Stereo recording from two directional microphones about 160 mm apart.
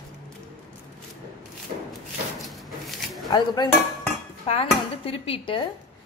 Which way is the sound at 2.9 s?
Centre (ahead or behind).